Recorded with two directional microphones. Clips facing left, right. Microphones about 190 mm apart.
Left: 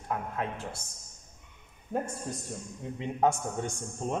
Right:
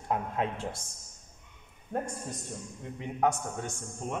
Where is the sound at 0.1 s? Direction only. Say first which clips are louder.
Right 2 dB; 20° right (ahead or behind).